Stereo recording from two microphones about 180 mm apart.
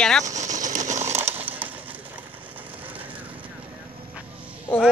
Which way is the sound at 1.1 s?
10° right (ahead or behind).